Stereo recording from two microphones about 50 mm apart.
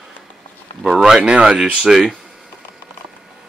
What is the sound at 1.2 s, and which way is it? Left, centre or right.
Speech, centre.